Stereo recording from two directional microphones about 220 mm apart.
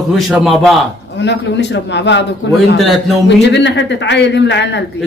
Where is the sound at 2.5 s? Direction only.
Centre (ahead or behind).